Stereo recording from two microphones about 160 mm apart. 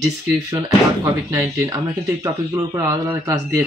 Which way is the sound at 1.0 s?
20° right (ahead or behind).